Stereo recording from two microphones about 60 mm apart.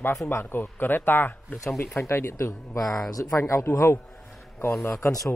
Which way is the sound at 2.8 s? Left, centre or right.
Centre.